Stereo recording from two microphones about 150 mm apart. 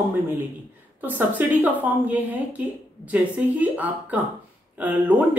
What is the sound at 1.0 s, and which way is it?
Speech, 10° right (ahead or behind).